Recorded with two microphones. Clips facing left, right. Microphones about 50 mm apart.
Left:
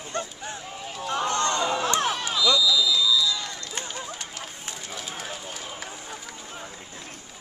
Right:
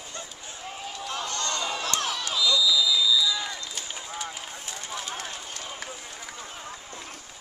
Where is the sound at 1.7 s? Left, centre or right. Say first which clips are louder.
Left 5 dB; left.